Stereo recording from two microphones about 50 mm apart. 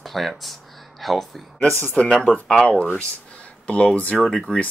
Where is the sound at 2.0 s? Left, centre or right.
Left.